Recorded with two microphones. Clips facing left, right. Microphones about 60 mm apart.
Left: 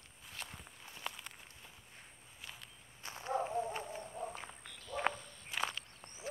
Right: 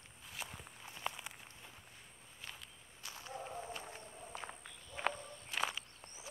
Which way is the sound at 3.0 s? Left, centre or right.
Left.